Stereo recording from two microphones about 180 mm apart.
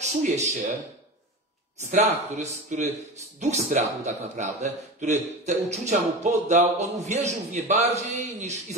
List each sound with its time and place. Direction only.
0.0 s speech: 40° right (ahead or behind)
1.8 s a man's voice: 40° right (ahead or behind)